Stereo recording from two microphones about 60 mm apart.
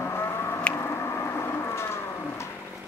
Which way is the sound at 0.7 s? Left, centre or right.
Left.